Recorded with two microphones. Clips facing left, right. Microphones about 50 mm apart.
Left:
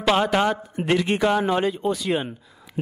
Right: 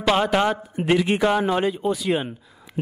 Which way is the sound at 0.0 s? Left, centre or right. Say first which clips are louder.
Even; centre.